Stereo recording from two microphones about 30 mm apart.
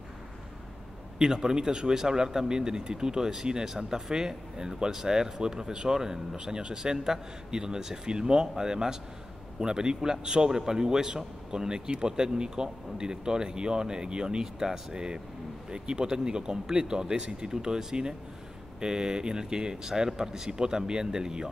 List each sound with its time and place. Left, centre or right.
1.1 s speech: right